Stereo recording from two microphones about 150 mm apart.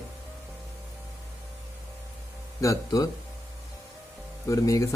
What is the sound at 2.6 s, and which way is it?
Speech, 25° left (ahead or behind).